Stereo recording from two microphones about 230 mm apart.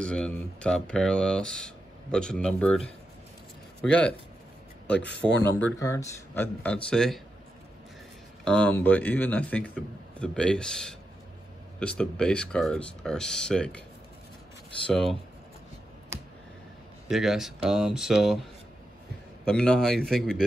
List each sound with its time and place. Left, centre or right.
0.0 s speech: centre
4.9 s speech: left
5.6 s speech: centre
8.5 s speech: centre
14.9 s speech: centre
17.1 s speech: centre
19.4 s speech: centre